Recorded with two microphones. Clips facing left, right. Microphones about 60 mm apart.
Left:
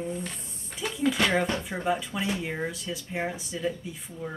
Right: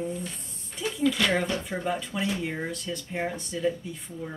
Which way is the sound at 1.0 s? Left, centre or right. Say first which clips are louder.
Even; left.